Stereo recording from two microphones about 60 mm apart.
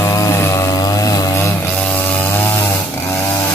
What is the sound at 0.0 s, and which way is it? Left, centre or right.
Chainsaw, left.